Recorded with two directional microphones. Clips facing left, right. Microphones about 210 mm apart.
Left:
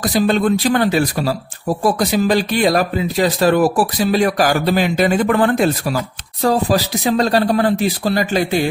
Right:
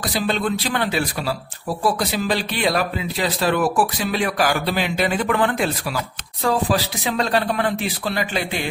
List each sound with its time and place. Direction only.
0.0 s a man's voice: 45° left (ahead or behind)